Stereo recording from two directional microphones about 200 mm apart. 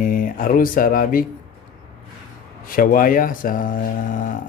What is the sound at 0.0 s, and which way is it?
Speech, 45° left (ahead or behind).